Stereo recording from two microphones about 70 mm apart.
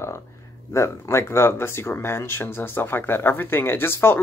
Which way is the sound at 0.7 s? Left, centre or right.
Left.